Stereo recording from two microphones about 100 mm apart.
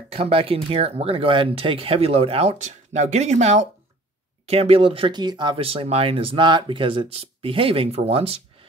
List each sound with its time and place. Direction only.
0.1 s speech: 70° right (ahead or behind); by 5.6 s 50° right (ahead or behind)
5.6 s speech: 70° right (ahead or behind)